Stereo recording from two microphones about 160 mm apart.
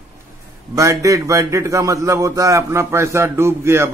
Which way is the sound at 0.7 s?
20° right (ahead or behind).